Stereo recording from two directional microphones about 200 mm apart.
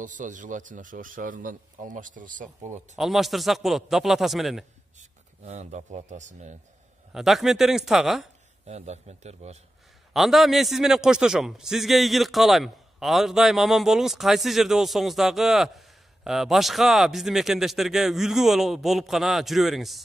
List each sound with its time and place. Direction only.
0.0 s speech: 40° right (ahead or behind)
3.0 s a man's voice: centre (ahead or behind)
4.9 s speech: 35° right (ahead or behind)
7.1 s a man's voice: centre (ahead or behind)
8.6 s speech: 35° right (ahead or behind)
10.1 s a man's voice: centre (ahead or behind)